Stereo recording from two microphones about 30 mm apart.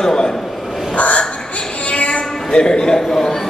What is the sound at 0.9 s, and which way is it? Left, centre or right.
Crow, left.